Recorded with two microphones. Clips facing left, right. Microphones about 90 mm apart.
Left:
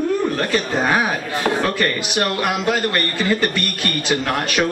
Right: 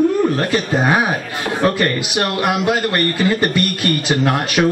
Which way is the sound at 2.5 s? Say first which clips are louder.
Right 3 dB; 15° right (ahead or behind).